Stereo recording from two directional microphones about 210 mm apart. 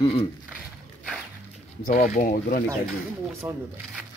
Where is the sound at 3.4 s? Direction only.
15° right (ahead or behind).